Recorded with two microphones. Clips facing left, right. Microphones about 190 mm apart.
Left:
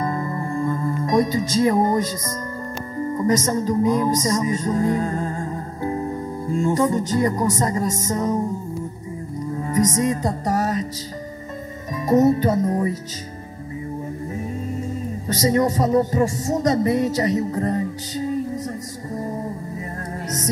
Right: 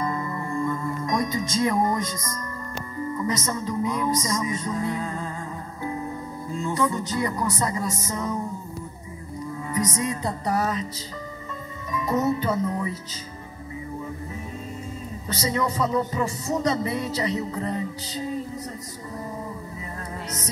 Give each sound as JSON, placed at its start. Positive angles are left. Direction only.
{"t": 0.1, "sound": "music", "side_deg": 30}
{"t": 3.2, "sound": "speech", "side_deg": 40}
{"t": 6.5, "sound": "music", "side_deg": 45}
{"t": 9.6, "sound": "music", "side_deg": 40}
{"t": 11.9, "sound": "speech", "side_deg": 45}
{"t": 15.2, "sound": "music", "side_deg": 45}